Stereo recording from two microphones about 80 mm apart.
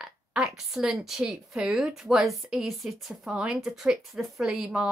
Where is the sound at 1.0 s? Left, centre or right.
Centre.